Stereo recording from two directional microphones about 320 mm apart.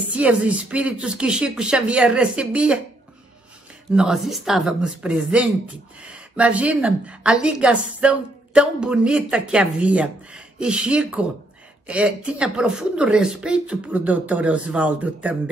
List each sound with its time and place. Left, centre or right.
0.1 s a woman's voice: centre
3.9 s a woman's voice: centre